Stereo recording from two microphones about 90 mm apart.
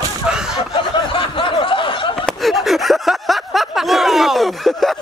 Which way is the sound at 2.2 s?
Centre (ahead or behind).